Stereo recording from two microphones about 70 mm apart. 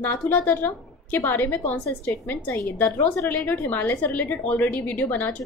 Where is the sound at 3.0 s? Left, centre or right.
Left.